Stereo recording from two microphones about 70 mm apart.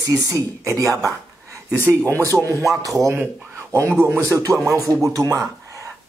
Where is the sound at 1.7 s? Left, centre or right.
Left.